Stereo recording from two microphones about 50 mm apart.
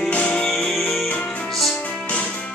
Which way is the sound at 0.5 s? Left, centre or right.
Centre.